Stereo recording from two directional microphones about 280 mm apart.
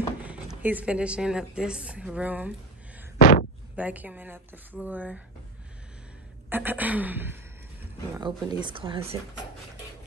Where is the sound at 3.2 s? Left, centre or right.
Left.